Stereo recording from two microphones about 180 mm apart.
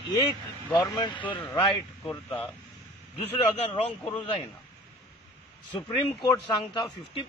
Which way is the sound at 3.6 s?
35° left (ahead or behind).